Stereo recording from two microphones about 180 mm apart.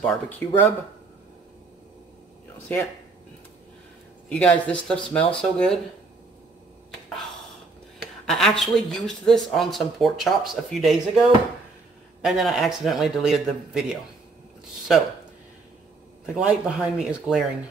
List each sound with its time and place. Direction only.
0.0 s speech: 5° left (ahead or behind)
4.3 s speech: 5° left (ahead or behind)
8.0 s speech: centre (ahead or behind)
14.9 s speech: 5° right (ahead or behind)
16.3 s speech: 5° right (ahead or behind)